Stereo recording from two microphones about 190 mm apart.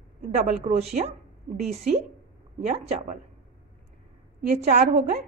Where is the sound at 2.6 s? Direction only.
40° right (ahead or behind).